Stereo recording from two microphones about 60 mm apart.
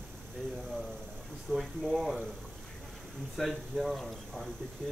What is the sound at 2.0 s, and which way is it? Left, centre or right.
Speech, centre.